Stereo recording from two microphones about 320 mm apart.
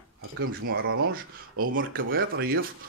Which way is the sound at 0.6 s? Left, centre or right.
Right.